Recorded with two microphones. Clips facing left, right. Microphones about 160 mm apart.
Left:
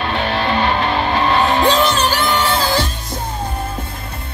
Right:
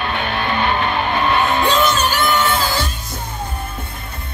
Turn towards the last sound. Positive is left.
turn(degrees=30)  # may be behind; listen again after turning